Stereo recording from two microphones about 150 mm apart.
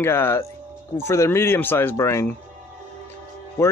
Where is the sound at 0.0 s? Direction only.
15° left (ahead or behind).